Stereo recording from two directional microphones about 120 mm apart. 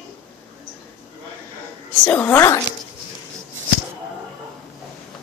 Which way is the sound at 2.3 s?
20° left (ahead or behind).